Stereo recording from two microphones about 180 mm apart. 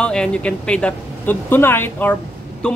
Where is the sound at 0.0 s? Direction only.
5° left (ahead or behind).